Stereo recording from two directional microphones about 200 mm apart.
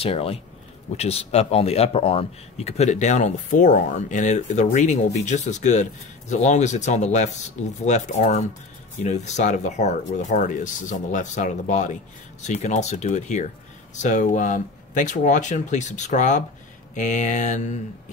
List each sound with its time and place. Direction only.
0.0 s speech: 30° left (ahead or behind)